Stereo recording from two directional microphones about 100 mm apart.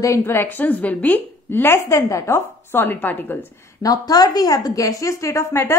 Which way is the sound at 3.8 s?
40° left (ahead or behind).